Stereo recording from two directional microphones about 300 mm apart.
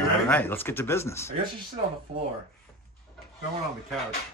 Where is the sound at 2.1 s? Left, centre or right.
Centre.